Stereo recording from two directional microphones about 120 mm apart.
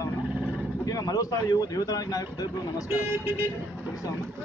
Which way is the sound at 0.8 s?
30° left (ahead or behind).